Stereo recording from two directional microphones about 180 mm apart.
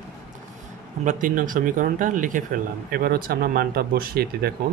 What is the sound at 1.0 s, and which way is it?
Speech, 50° right (ahead or behind).